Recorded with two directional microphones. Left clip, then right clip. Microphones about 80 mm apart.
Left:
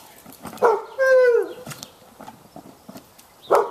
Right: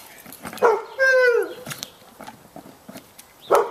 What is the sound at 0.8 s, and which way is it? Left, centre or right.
Dog, right.